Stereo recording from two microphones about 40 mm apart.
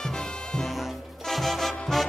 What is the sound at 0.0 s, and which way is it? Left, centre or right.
Music, centre.